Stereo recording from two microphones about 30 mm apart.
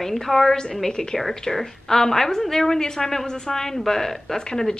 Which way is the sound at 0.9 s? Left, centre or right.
Left.